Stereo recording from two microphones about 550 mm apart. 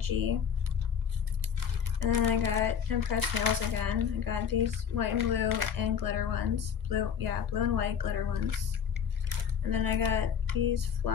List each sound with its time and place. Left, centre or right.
0.0 s speech: right
2.0 s speech: right
9.7 s speech: right